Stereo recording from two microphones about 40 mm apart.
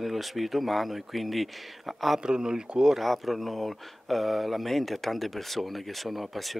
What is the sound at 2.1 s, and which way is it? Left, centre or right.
Speech, centre.